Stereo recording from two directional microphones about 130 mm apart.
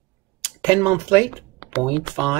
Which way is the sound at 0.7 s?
25° right (ahead or behind).